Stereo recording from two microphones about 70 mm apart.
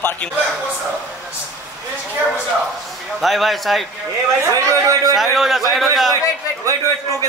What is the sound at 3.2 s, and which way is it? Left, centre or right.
Speech, centre.